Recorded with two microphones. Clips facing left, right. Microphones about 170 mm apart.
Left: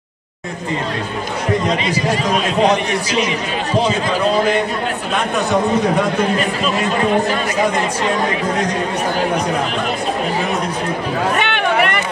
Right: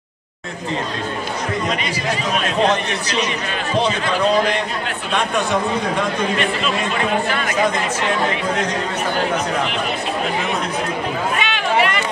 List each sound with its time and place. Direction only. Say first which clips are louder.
2.6 s a man's voice: left 3 dB; 10° left (ahead or behind)
11.4 s run: left 2 dB; 60° left (ahead or behind)